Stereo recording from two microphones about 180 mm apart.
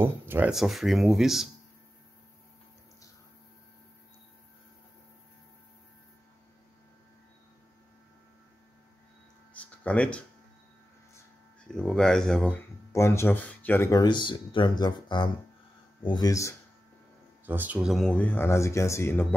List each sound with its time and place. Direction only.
0.0 s speech: 10° right (ahead or behind)
9.5 s a sound: 5° left (ahead or behind)
11.6 s speech: 5° left (ahead or behind)
17.5 s speech: 10° right (ahead or behind); by 19.2 s 15° left (ahead or behind)